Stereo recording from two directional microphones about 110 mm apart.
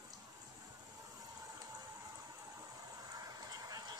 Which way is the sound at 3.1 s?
35° right (ahead or behind).